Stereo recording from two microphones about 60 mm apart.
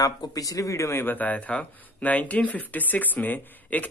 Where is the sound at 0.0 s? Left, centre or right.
Left.